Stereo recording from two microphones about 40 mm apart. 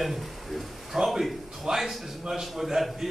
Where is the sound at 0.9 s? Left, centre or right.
Centre.